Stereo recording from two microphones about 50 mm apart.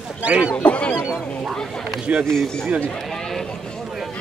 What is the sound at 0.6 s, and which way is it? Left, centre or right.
Goose, left.